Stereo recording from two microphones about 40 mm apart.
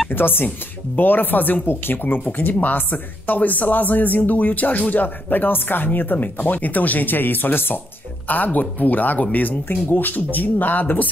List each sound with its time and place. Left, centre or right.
0.1 s speech: left
1.7 s speech: left
2.2 s speech: left
5.9 s speech: left
8.3 s speech: left